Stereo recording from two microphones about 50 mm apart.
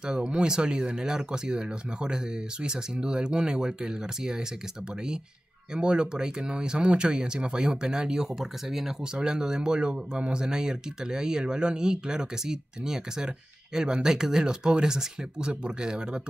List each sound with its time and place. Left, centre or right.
0.0 s speech: centre
5.7 s speech: centre